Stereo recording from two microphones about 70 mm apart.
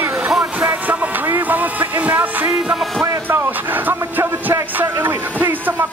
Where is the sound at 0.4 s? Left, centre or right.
Right.